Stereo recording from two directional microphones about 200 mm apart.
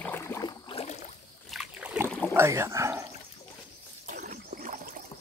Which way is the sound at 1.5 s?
5° right (ahead or behind).